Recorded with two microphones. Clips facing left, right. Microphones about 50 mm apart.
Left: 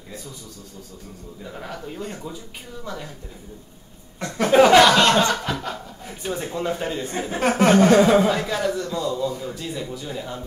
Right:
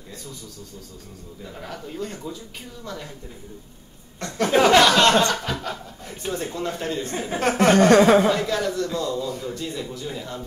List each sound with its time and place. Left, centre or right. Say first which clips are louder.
1.4 s a man's voice: left 2 dB; centre
4.2 s chuckle: left 3 dB; centre
8.3 s a man's voice: even; centre